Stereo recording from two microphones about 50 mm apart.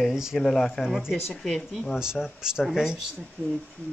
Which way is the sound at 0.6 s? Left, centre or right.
Centre.